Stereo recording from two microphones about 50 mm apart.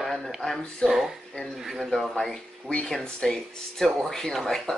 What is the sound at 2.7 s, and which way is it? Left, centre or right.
Speech, left.